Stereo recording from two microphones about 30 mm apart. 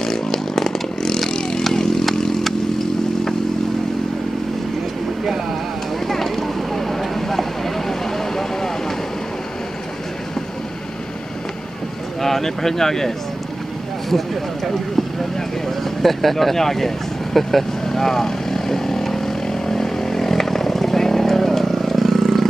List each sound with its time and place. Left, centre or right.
0.0 s chainsaw: centre
1.3 s vehicle: centre
5.2 s a sound: centre
6.0 s vehicle: centre
12.2 s speech: centre
15.8 s speech: centre
17.8 s vehicle: centre